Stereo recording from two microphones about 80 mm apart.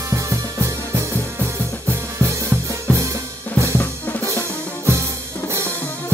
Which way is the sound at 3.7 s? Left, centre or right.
Left.